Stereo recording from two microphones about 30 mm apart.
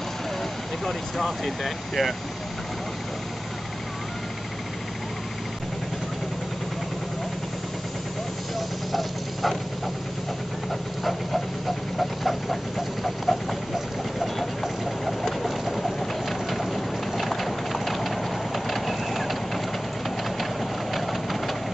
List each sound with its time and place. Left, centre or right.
0.8 s speech: centre
8.5 s vehicle: centre
11.1 s a sound: centre
14.2 s vehicle: centre
15.8 s train: centre
20.9 s engine: centre